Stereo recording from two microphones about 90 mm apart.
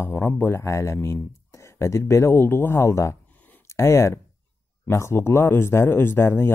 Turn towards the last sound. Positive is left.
turn(degrees=25)  # may be behind; listen again after turning